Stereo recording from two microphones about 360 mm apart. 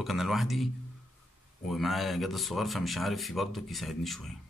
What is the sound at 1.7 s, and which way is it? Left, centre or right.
Speech, centre.